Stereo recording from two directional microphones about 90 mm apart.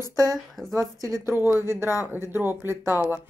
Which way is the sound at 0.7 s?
40° right (ahead or behind).